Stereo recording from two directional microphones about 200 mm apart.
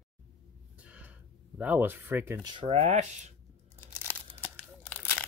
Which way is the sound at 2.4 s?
30° right (ahead or behind).